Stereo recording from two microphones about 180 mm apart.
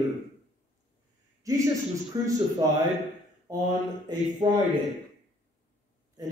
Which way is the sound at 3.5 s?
20° right (ahead or behind).